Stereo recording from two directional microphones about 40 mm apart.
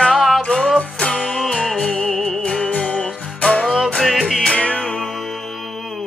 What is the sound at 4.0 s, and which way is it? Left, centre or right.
Music, centre.